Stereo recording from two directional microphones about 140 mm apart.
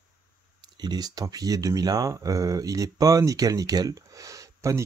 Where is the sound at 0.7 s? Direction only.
30° right (ahead or behind).